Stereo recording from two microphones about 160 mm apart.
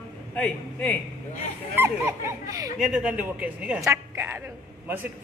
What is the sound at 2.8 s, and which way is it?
A man's voice, 5° right (ahead or behind).